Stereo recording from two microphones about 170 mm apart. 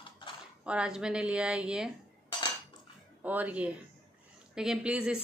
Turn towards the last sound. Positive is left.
turn(degrees=-5)  # may be behind; listen again after turning